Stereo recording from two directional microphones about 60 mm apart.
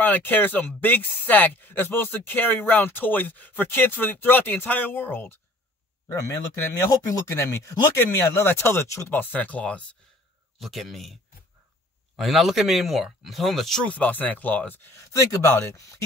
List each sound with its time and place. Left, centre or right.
0.0 s speech: left
6.9 s speech: left
8.1 s speech: left
8.8 s speech: left
9.1 s speech: left
10.6 s speech: centre
12.2 s speech: centre
13.8 s speech: left
15.1 s speech: left